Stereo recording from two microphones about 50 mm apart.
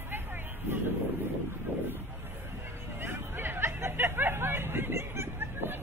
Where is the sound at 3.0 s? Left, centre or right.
Right.